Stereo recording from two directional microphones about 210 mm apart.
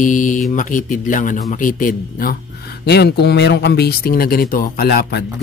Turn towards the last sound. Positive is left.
turn(degrees=45)  # may be behind; listen again after turning